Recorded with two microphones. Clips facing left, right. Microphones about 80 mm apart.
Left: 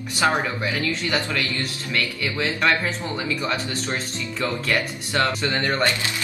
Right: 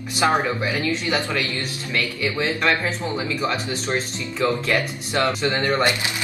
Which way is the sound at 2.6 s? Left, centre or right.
Centre.